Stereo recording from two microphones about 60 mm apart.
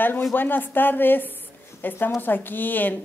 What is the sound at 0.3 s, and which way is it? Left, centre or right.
Speech, left.